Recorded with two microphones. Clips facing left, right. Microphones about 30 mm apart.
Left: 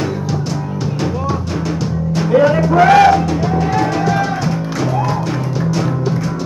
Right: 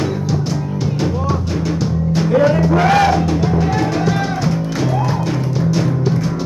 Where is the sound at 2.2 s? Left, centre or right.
Centre.